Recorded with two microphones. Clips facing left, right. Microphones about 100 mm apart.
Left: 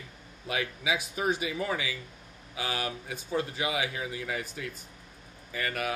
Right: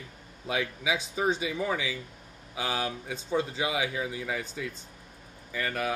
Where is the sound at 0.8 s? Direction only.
25° right (ahead or behind).